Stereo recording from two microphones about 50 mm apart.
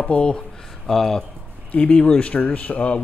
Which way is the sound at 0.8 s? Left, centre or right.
Centre.